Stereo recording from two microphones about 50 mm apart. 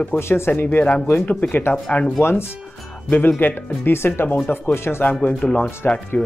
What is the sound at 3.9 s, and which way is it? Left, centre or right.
Speech, left.